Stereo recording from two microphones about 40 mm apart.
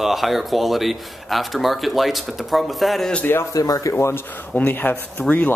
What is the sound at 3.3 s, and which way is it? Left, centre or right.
Speech, left.